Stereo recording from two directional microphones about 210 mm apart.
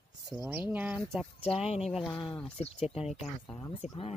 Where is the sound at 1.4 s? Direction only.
30° left (ahead or behind).